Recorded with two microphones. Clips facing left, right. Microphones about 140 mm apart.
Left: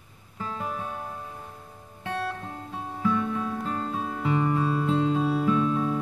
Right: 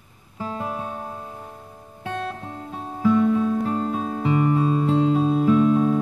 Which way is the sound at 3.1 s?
20° right (ahead or behind).